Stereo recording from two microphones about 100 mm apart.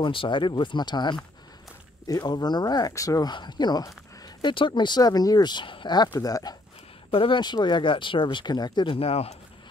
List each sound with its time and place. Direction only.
0.0 s speech: 55° left (ahead or behind)
2.0 s speech: 35° left (ahead or behind); by 6.0 s 50° left (ahead or behind)
6.1 s speech: 40° left (ahead or behind)
7.1 s speech: 60° left (ahead or behind)
8.9 s speech: 85° left